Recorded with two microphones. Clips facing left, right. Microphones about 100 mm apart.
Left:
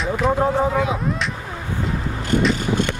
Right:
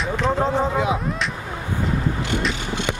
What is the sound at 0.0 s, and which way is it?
Speech, 10° left (ahead or behind).